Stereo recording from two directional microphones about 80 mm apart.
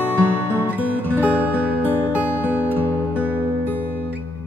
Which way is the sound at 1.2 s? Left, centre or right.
Right.